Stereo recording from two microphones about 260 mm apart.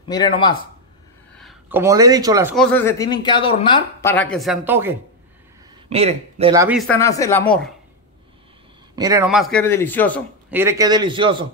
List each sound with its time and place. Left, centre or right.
0.1 s speech: centre
1.3 s speech: centre
2.5 s speech: centre
5.9 s a man's voice: right
6.5 s a man's voice: centre
6.8 s speech: centre
8.9 s speech: centre
9.3 s speech: centre
10.5 s a man's voice: centre